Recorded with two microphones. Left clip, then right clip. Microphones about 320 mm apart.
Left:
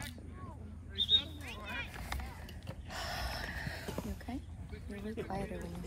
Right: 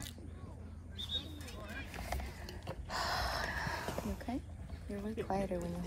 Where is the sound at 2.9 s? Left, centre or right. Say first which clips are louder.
Right 4 dB; centre.